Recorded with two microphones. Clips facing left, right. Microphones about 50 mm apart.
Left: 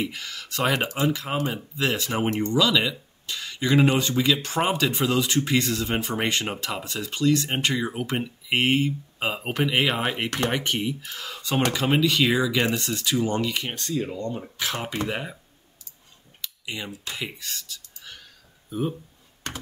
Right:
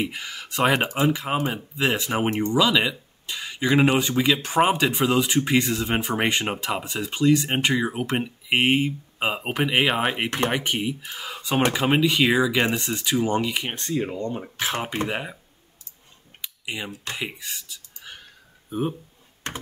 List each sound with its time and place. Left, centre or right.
0.0 s speech: centre
13.7 s speech: right
16.3 s typing: centre
17.2 s speech: centre